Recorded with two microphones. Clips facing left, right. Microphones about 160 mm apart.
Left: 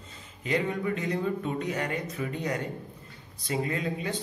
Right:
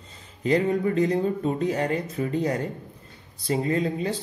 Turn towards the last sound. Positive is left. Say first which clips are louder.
# right 6 dB
turn(degrees=-35)  # may be behind; listen again after turning